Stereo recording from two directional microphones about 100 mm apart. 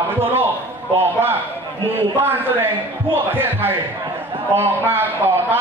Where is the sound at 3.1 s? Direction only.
20° right (ahead or behind).